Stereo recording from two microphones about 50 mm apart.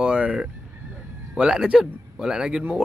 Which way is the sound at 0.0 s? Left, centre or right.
Centre.